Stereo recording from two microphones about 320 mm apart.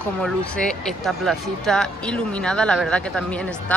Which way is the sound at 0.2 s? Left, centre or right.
Centre.